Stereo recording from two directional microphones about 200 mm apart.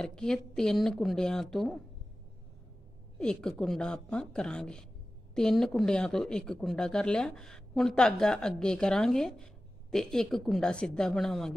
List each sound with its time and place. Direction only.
0.0 s speech: 5° left (ahead or behind)
3.2 s speech: 5° left (ahead or behind)